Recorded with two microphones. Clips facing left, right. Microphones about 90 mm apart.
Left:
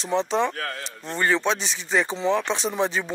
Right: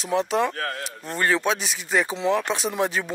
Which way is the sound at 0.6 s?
40° right (ahead or behind).